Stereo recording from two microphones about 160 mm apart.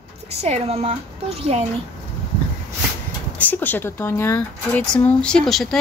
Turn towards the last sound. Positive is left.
turn(degrees=0)  # may be behind; listen again after turning